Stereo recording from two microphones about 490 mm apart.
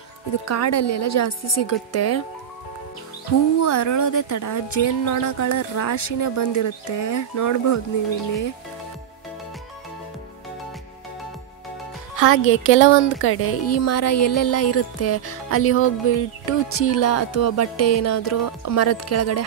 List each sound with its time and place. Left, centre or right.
0.5 s a woman's voice: left
3.6 s a woman's voice: left
12.2 s speech: left